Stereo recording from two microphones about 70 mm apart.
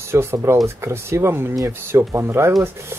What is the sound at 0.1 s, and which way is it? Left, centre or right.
Speech, right.